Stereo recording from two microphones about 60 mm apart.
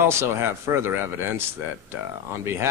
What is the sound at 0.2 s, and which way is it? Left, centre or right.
Speech, right.